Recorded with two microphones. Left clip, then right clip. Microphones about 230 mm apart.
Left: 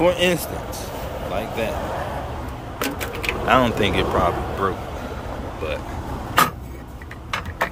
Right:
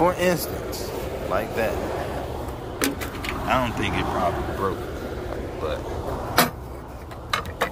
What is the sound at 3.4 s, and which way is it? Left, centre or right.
Speech, left.